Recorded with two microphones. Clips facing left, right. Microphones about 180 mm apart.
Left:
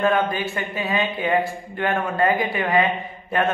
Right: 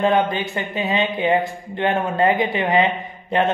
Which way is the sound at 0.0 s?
20° right (ahead or behind).